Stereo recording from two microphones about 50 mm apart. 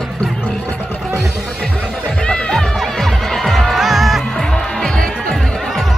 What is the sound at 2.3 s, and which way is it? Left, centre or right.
Music, centre.